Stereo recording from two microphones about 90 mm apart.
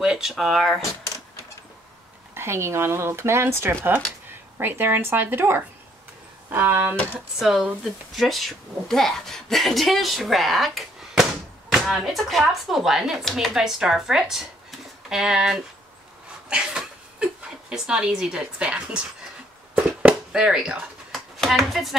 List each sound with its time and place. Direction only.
0.0 s speech: 5° right (ahead or behind)
2.3 s speech: 30° right (ahead or behind)
7.3 s speech: 5° right (ahead or behind)
19.7 s a sound: 15° right (ahead or behind)
21.4 s speech: centre (ahead or behind)